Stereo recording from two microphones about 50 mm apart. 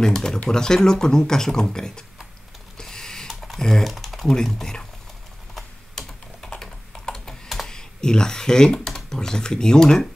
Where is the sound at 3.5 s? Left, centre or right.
Centre.